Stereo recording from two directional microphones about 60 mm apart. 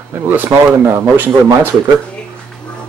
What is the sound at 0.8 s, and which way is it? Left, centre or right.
Speech, right.